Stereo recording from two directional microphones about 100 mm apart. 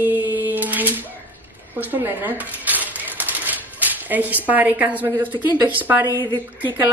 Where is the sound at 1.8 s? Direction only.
20° right (ahead or behind).